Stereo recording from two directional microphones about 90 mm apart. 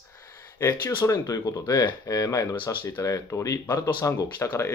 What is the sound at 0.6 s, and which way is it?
Speech, 30° left (ahead or behind).